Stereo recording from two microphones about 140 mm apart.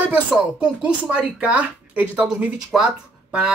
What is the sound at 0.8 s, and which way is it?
Speech, 10° right (ahead or behind).